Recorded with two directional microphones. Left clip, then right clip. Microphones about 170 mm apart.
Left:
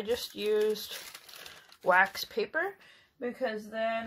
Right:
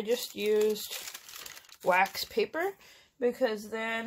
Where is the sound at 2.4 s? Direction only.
35° right (ahead or behind).